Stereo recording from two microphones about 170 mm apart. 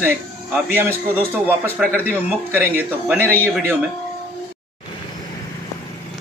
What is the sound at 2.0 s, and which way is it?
Speech, 15° right (ahead or behind).